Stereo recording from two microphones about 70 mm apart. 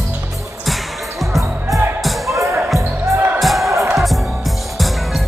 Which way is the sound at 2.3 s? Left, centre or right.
Right.